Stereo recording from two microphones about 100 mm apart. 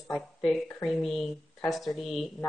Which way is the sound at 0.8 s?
Centre (ahead or behind).